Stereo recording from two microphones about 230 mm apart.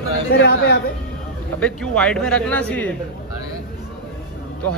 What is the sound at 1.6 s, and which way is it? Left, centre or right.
A man's voice, centre.